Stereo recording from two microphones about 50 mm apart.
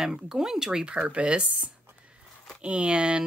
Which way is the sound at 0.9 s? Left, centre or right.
Right.